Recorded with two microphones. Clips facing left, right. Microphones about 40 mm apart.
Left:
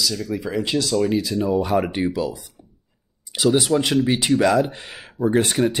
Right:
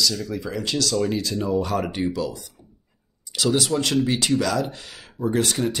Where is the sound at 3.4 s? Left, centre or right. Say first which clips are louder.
Left 4 dB; left.